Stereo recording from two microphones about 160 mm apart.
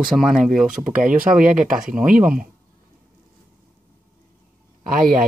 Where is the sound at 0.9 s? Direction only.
55° right (ahead or behind).